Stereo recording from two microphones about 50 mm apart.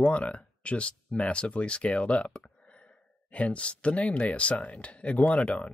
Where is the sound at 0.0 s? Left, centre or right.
Left.